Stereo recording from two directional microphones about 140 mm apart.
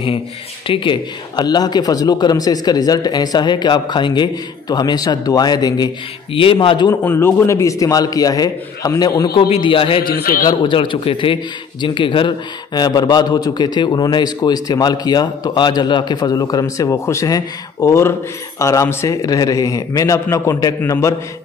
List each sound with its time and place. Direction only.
0.7 s a man's voice: 35° left (ahead or behind)
6.9 s a man's voice: 15° left (ahead or behind)
9.5 s a man's voice: 40° left (ahead or behind)
10.0 s a man's voice: 90° left
10.4 s a man's voice: 35° left (ahead or behind)